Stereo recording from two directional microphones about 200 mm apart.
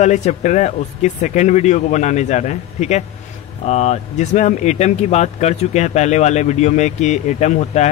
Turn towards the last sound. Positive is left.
turn(degrees=35)  # may be behind; listen again after turning